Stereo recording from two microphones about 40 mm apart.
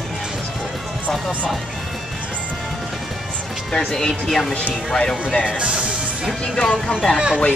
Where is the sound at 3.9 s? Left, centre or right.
Centre.